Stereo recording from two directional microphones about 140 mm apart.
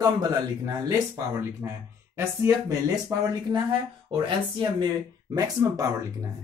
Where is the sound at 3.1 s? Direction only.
25° right (ahead or behind).